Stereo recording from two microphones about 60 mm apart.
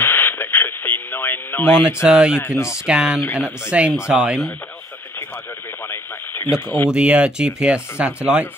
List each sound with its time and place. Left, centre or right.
0.0 s radio: left
2.0 s speech: centre
2.3 s speech: left
2.7 s speech: centre
5.9 s radio: left
6.9 s speech: right